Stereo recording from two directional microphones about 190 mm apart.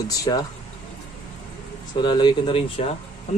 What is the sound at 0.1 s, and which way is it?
Speech, 20° left (ahead or behind).